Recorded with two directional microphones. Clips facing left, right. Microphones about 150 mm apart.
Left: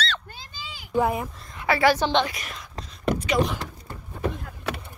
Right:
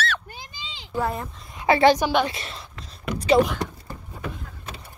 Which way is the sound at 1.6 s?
20° right (ahead or behind).